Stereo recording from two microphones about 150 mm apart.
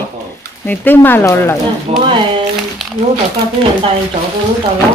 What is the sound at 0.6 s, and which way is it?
Speech, 10° left (ahead or behind).